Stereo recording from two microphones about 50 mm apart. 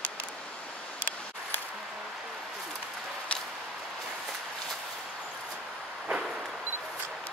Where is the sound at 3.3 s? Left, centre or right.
Left.